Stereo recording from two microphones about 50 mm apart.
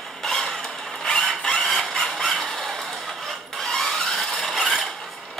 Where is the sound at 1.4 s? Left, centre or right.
Centre.